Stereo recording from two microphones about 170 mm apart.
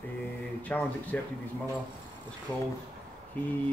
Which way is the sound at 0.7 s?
10° left (ahead or behind).